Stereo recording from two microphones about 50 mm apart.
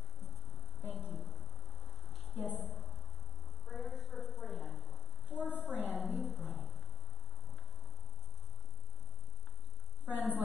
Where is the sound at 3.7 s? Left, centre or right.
Centre.